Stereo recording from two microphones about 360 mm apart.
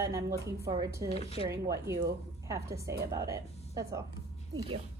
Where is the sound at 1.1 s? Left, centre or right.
Centre.